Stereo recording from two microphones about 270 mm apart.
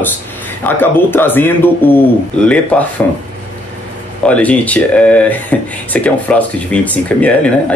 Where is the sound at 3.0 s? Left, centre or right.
Centre.